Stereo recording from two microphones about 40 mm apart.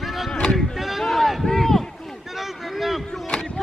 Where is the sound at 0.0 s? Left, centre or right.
Centre.